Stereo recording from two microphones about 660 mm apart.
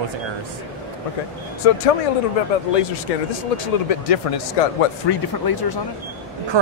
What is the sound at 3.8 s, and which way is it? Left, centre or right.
Speech, left.